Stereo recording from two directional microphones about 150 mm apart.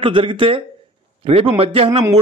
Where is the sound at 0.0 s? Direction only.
35° right (ahead or behind).